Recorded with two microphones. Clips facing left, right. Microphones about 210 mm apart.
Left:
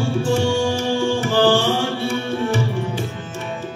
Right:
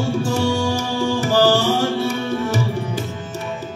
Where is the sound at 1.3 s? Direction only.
40° right (ahead or behind).